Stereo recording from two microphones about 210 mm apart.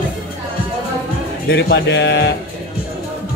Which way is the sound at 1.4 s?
50° left (ahead or behind).